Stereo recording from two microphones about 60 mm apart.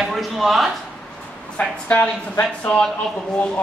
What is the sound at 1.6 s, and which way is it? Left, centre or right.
Speech, left.